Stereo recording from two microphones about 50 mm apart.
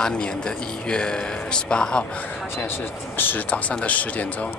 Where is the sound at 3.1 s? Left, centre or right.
Left.